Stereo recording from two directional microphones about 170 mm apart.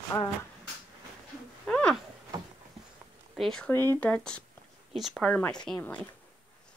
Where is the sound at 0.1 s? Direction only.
20° left (ahead or behind).